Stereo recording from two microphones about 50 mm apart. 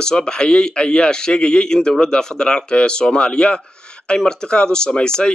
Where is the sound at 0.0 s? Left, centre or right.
Centre.